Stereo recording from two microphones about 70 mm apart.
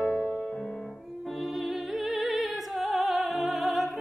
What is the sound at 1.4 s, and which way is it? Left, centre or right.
Music, centre.